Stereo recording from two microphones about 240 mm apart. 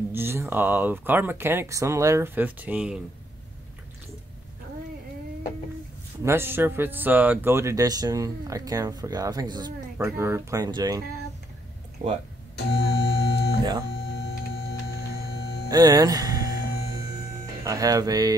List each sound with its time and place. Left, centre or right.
0.1 s speech: centre
6.2 s speech: centre
12.5 s music: left
15.7 s speech: centre
17.6 s speech: centre